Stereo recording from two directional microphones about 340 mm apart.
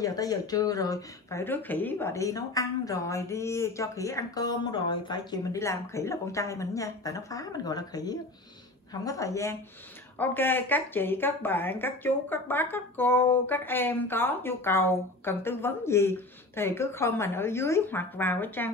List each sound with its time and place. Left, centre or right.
0.0 s speech: centre